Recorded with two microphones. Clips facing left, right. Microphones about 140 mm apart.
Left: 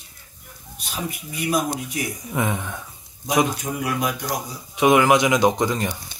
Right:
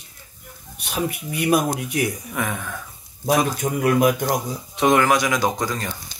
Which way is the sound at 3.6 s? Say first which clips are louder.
Right 7 dB; 55° right (ahead or behind).